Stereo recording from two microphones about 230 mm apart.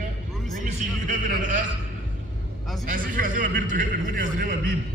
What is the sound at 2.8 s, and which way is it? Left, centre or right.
A man's voice, right.